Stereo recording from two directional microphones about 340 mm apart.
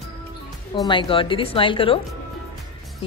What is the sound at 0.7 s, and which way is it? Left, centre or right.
Speech, centre.